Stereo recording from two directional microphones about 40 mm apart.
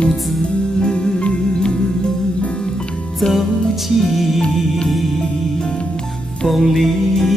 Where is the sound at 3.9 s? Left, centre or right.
Centre.